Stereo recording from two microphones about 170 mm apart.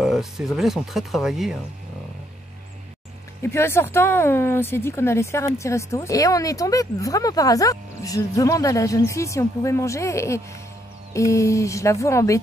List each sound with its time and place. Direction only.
0.0 s speech: centre (ahead or behind)
3.4 s speech: 15° left (ahead or behind)